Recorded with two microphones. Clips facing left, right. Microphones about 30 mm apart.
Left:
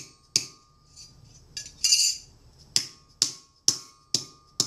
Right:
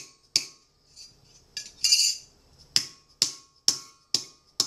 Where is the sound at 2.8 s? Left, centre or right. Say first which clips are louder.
Right 1 dB; right.